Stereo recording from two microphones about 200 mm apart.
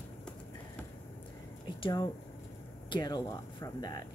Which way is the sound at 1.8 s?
20° left (ahead or behind).